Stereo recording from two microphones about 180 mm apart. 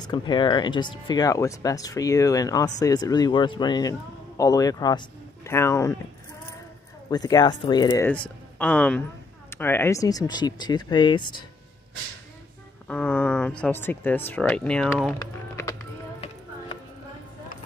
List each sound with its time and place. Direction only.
0.0 s speech: 25° left (ahead or behind)
7.1 s speech: 20° left (ahead or behind)
8.1 s speech: 5° left (ahead or behind); by 11.4 s 25° left (ahead or behind)
12.8 s speech: 10° left (ahead or behind)